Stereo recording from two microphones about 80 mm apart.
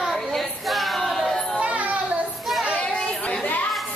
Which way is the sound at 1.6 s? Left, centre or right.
Centre.